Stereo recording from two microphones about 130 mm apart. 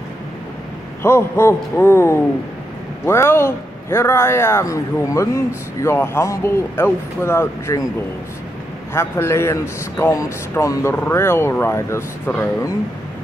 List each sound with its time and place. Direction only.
1.0 s speech: 20° left (ahead or behind)
8.9 s speech: 20° left (ahead or behind)